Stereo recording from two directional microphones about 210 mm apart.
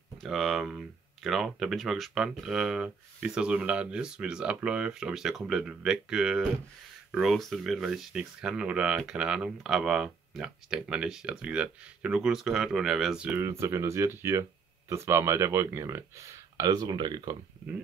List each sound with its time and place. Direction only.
0.2 s speech: centre (ahead or behind); by 17.4 s 20° right (ahead or behind)